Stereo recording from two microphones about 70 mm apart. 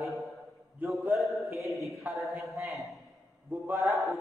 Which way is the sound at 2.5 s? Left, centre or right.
Right.